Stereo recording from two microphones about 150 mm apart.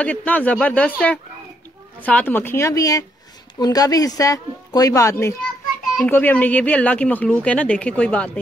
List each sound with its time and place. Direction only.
0.0 s speech: 10° left (ahead or behind)